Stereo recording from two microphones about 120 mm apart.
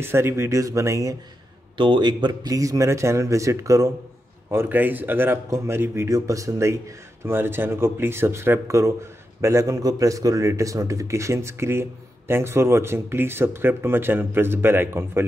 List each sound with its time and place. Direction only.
0.0 s speech: 20° right (ahead or behind)
1.8 s speech: 40° right (ahead or behind); by 15.2 s 20° right (ahead or behind)